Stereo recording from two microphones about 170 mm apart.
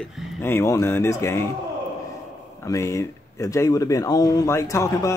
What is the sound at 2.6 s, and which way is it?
Speech, 15° left (ahead or behind).